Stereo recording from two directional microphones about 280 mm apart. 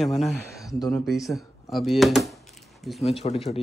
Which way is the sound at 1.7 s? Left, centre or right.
Centre.